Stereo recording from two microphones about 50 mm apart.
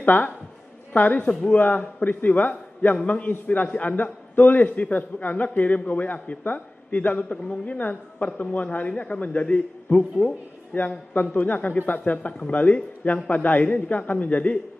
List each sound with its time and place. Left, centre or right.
0.0 s a woman's voice: left